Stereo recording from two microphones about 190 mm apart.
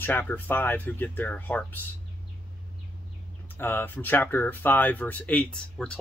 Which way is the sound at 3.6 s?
10° left (ahead or behind).